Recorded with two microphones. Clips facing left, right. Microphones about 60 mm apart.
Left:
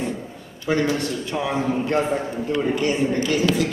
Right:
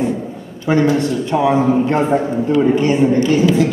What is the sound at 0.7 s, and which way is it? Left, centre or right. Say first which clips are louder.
A man's voice: right 7 dB; right.